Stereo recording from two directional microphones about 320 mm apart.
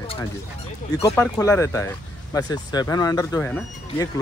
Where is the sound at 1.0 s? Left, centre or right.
Centre.